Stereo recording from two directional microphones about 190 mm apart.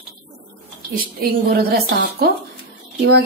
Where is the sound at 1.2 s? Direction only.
55° right (ahead or behind).